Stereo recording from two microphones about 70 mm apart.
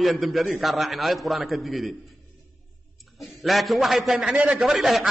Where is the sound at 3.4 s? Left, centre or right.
Centre.